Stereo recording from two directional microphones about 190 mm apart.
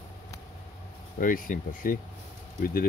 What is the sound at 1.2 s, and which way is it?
Speech, 45° left (ahead or behind).